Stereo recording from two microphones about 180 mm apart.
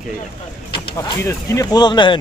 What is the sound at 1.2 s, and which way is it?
Speech, 20° left (ahead or behind).